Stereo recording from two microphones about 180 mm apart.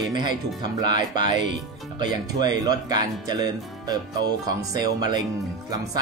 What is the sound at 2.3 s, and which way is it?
Speech, 25° right (ahead or behind).